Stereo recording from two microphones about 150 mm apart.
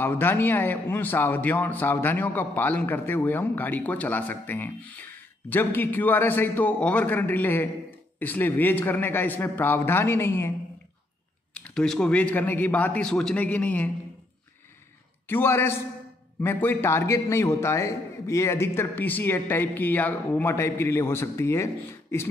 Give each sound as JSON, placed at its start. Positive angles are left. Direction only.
{"t": 0.0, "sound": "a man's voice", "side_deg": 15}
{"t": 11.5, "sound": "a man's voice", "side_deg": 5}
{"t": 15.2, "sound": "a man's voice", "side_deg": 15}